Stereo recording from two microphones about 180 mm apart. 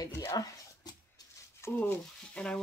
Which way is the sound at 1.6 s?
10° left (ahead or behind).